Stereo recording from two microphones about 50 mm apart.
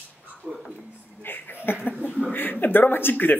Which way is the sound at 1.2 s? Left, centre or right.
Left.